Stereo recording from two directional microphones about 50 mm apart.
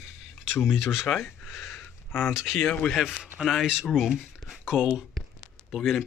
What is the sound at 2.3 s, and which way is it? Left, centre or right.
Speech, left.